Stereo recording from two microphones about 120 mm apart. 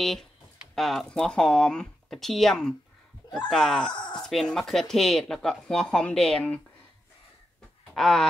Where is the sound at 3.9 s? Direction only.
40° left (ahead or behind).